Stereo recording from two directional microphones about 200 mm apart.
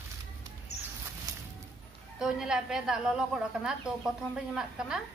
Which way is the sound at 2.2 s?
5° right (ahead or behind).